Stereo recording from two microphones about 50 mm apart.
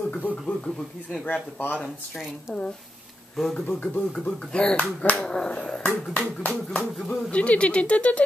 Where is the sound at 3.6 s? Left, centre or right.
Left.